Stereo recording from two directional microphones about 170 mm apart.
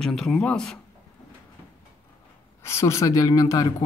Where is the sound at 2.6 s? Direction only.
15° left (ahead or behind).